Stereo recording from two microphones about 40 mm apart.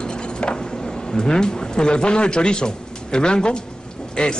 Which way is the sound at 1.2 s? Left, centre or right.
Centre.